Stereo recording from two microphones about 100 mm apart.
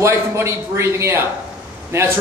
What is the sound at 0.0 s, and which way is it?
A man's voice, 30° right (ahead or behind).